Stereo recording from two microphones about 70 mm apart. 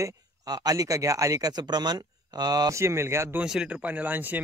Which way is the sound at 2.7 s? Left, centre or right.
Right.